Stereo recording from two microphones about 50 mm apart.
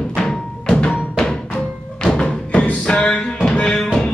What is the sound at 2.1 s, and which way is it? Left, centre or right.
Thump, left.